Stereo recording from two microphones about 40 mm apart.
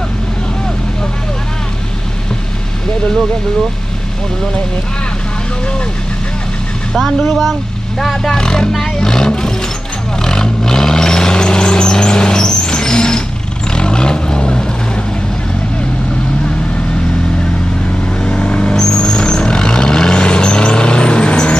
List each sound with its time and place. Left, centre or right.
7.2 s speech: centre
8.0 s speech: centre
10.2 s vehicle: centre
18.2 s vehicle: left
18.8 s vehicle: centre